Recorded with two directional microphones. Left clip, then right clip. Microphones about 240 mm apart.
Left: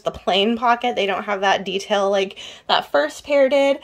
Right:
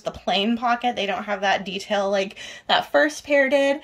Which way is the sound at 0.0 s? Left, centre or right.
Centre.